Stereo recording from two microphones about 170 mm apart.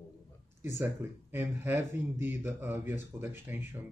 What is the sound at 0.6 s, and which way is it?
A man's voice, 15° right (ahead or behind).